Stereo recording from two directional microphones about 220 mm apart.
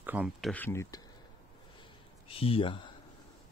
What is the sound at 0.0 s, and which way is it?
Speech, 5° right (ahead or behind).